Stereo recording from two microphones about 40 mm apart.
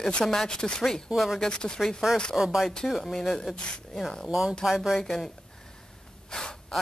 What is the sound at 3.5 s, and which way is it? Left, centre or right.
Speech, left.